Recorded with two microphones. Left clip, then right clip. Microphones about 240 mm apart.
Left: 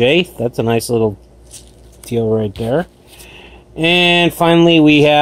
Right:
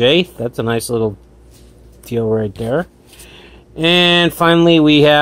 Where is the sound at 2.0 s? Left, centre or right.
Centre.